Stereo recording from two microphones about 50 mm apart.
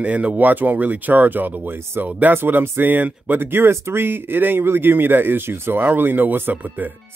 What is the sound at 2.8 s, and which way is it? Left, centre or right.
Speech, right.